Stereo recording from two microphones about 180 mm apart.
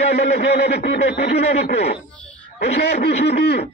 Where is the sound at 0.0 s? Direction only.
35° left (ahead or behind).